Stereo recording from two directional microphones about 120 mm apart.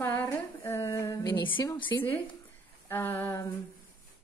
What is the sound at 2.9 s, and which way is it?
Speech, 20° left (ahead or behind).